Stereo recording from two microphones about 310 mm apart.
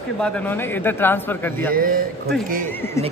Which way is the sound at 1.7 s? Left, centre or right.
Right.